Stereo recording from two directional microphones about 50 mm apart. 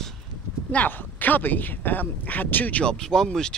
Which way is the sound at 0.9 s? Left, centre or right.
Left.